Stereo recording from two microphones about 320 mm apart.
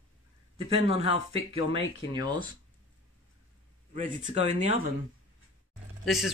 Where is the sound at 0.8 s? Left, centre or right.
Centre.